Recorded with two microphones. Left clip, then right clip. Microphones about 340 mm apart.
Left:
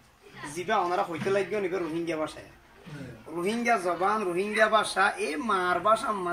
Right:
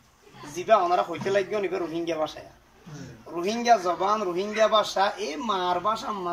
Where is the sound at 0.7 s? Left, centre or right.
Right.